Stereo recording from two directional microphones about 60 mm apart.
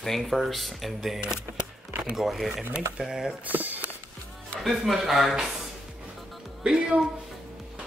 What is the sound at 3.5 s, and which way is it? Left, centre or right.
Speech, right.